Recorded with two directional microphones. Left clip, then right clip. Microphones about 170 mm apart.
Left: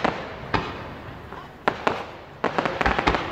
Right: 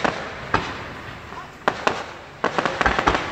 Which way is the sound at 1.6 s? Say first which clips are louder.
Right 2 dB; 10° left (ahead or behind).